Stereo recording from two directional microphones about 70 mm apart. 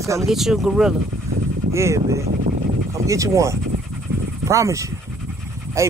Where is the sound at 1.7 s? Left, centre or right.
Right.